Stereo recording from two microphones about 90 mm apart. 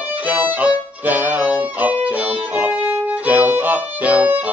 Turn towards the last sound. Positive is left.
turn(degrees=-20)  # may be behind; listen again after turning